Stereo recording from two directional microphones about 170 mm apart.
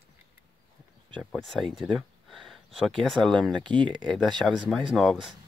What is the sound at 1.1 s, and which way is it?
Speech, 5° left (ahead or behind).